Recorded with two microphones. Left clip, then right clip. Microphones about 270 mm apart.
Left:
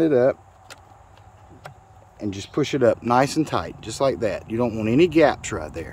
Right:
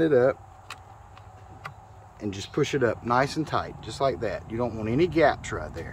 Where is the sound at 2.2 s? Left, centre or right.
Left.